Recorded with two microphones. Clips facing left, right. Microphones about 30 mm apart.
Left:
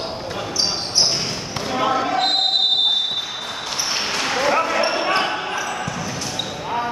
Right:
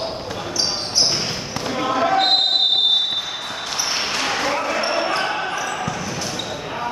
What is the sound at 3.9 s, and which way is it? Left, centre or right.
Basketball bounce, centre.